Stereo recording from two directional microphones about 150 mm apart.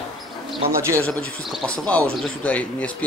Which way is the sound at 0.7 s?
20° right (ahead or behind).